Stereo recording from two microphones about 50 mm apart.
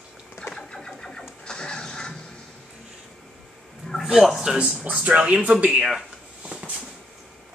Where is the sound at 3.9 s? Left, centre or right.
Centre.